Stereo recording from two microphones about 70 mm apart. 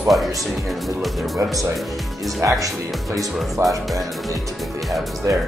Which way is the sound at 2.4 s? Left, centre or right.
Right.